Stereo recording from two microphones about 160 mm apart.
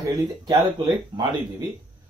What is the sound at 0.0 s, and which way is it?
Speech, 20° right (ahead or behind).